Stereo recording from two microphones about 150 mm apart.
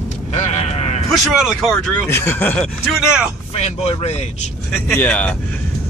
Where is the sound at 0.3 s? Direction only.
45° left (ahead or behind).